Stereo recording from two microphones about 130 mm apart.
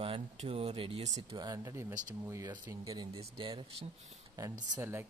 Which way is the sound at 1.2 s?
30° right (ahead or behind).